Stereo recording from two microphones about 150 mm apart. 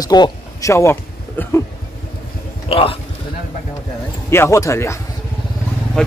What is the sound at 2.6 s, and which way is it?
Speech, 40° left (ahead or behind).